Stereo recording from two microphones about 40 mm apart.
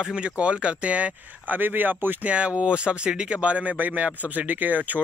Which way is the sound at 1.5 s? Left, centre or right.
Right.